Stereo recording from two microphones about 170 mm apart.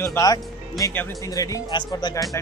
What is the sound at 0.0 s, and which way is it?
Speech, 20° left (ahead or behind).